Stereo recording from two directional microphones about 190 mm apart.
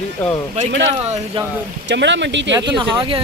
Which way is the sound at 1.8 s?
70° right (ahead or behind).